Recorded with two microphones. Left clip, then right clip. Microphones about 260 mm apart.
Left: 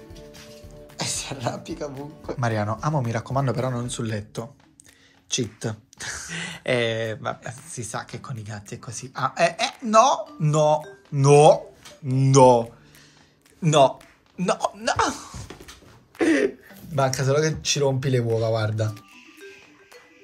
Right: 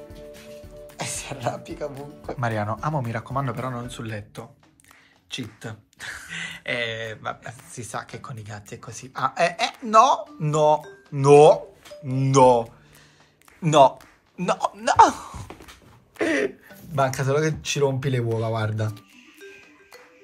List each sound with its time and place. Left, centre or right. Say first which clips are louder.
0.8 s speech: left 3 dB; centre